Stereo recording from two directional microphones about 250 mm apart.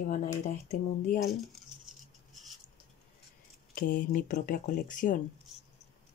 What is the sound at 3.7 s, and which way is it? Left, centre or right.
Speech, left.